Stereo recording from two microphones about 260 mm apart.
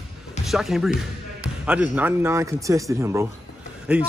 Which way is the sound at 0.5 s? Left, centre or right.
Centre.